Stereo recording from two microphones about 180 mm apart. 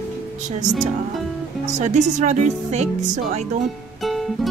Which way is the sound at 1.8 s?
40° right (ahead or behind).